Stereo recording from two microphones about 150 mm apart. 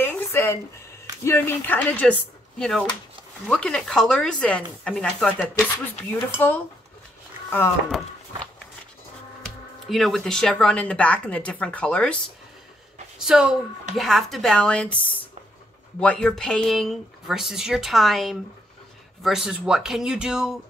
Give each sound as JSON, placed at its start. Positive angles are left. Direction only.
{"t": 0.0, "sound": "a sound", "side_deg": 15}
{"t": 1.2, "sound": "a woman's voice", "side_deg": 15}
{"t": 6.4, "sound": "a woman's voice", "side_deg": 15}
{"t": 9.8, "sound": "a woman's voice", "side_deg": 0}
{"t": 13.2, "sound": "speech", "side_deg": -5}
{"t": 16.0, "sound": "speech", "side_deg": 5}